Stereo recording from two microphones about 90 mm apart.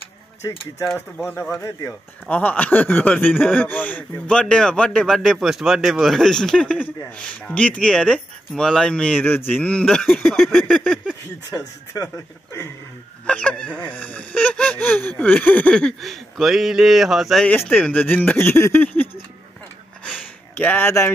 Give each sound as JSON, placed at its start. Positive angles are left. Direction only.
{"t": 0.4, "sound": "speech", "side_deg": 30}
{"t": 1.6, "sound": "speech", "side_deg": 40}
{"t": 2.2, "sound": "speech", "side_deg": 15}
{"t": 10.0, "sound": "a sound", "side_deg": 0}
{"t": 11.5, "sound": "speech", "side_deg": 40}
{"t": 13.3, "sound": "speech", "side_deg": 10}
{"t": 17.9, "sound": "speech", "side_deg": 20}
{"t": 20.1, "sound": "a sound", "side_deg": 20}